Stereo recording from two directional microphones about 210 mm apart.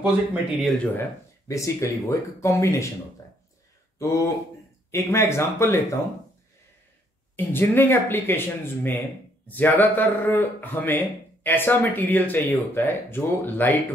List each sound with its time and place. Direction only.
0.0 s speech: 5° right (ahead or behind)
1.5 s speech: 15° left (ahead or behind)
4.9 s speech: 10° left (ahead or behind)
7.3 s speech: 10° left (ahead or behind)